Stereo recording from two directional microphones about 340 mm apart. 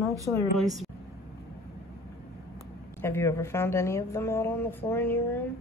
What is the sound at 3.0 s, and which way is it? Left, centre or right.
Speech, centre.